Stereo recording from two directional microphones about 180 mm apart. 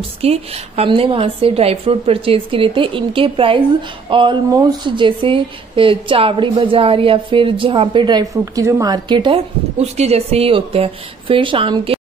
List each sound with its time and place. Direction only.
0.2 s a woman's voice: 35° right (ahead or behind)